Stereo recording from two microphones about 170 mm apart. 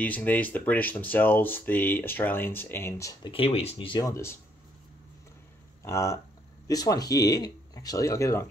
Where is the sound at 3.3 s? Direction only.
35° left (ahead or behind); by 4.3 s 20° left (ahead or behind).